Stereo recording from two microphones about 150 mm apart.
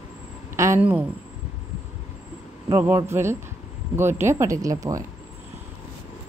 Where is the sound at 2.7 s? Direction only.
15° right (ahead or behind).